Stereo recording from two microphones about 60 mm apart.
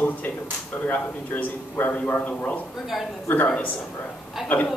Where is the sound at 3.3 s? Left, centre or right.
Left.